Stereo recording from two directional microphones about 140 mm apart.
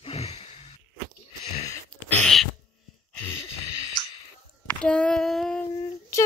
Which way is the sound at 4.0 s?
30° left (ahead or behind).